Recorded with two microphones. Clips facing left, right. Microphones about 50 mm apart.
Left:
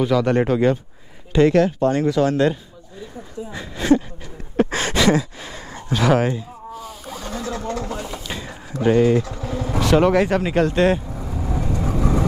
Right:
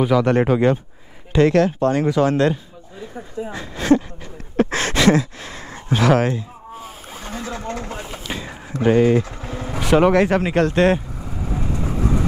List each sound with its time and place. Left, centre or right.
0.0 s speech: centre
4.6 s a sound: centre
6.0 s speech: centre
6.7 s vehicle: right
8.8 s speech: centre
9.2 s speech: right
9.6 s vehicle: right
10.1 s speech: centre
11.2 s vehicle: right